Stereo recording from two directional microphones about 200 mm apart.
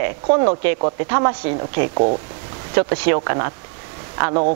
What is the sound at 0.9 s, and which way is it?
Speech, 15° right (ahead or behind).